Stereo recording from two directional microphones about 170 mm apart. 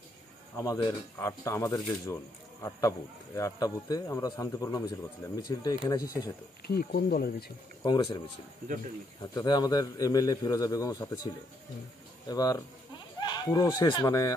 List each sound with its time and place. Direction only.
0.6 s speech: 15° left (ahead or behind)
3.3 s a man's voice: 20° left (ahead or behind)
6.7 s speech: 70° left (ahead or behind)
7.8 s a man's voice: 25° left (ahead or behind)
9.2 s a man's voice: 20° left (ahead or behind)
12.3 s a man's voice: 25° left (ahead or behind)